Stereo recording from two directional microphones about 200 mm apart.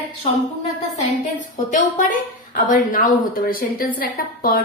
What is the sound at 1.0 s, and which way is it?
A woman's voice, 40° left (ahead or behind).